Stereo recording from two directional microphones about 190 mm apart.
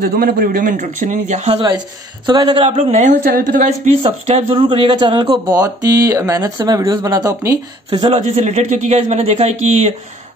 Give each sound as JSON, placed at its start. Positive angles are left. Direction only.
{"t": 0.1, "sound": "a man's voice", "side_deg": -50}
{"t": 2.2, "sound": "a woman's voice", "side_deg": -25}
{"t": 3.8, "sound": "speech", "side_deg": -30}